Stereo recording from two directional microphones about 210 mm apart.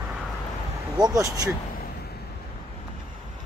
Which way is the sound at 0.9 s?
15° right (ahead or behind).